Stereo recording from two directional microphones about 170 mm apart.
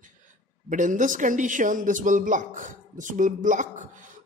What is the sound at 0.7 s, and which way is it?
A man's voice, 50° right (ahead or behind).